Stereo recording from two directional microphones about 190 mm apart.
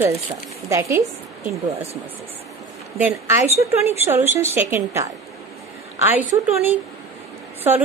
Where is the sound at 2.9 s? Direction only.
10° right (ahead or behind).